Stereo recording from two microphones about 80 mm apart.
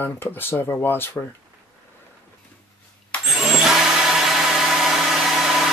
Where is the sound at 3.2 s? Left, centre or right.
Centre.